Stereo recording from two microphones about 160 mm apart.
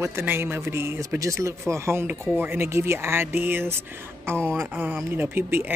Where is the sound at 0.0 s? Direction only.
15° right (ahead or behind).